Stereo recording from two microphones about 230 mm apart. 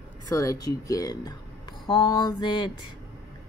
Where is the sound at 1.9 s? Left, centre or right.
Left.